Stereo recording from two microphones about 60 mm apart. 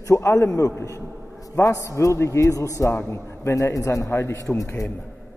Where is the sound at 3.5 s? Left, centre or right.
Left.